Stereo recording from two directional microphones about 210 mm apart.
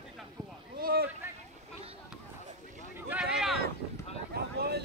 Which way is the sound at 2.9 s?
5° right (ahead or behind).